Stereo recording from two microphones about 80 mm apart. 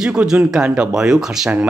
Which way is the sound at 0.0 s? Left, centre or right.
Centre.